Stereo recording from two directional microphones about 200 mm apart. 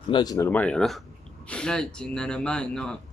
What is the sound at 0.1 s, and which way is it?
A man's voice, 20° left (ahead or behind).